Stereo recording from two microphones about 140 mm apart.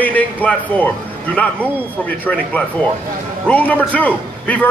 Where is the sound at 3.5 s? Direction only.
10° left (ahead or behind).